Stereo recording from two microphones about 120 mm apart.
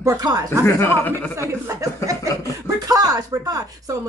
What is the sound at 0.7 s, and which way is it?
Speech, 20° left (ahead or behind).